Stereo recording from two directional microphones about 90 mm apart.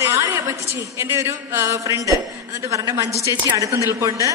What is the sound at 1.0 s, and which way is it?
A woman's voice, 30° right (ahead or behind).